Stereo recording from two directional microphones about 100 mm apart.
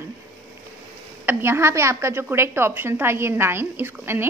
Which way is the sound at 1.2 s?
25° right (ahead or behind).